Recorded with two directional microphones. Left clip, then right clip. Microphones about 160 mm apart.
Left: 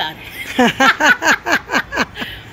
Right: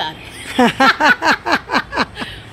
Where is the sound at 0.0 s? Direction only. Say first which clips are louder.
Left 1 dB; centre (ahead or behind).